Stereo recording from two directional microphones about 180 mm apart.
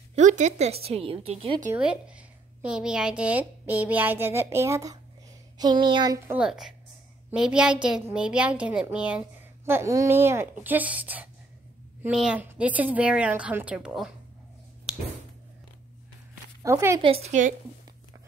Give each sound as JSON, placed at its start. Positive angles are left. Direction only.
{"t": 0.1, "sound": "a sound", "side_deg": -40}
{"t": 0.8, "sound": "a woman's voice", "side_deg": -35}
{"t": 1.7, "sound": "a woman's voice", "side_deg": -5}
{"t": 6.2, "sound": "a woman's voice", "side_deg": -5}
{"t": 16.6, "sound": "a woman's voice", "side_deg": -15}
{"t": 17.0, "sound": "a woman's voice", "side_deg": -35}